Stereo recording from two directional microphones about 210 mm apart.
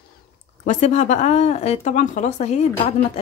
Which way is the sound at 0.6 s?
35° left (ahead or behind).